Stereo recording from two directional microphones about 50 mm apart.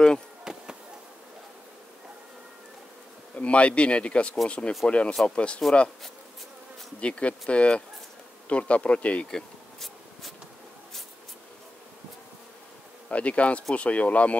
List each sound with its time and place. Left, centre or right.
0.4 s a sound: centre
3.3 s speech: left
7.0 s speech: left
9.3 s bee: centre
13.1 s speech: left